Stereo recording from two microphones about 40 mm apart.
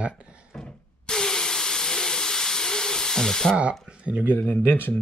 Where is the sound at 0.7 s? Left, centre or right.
Centre.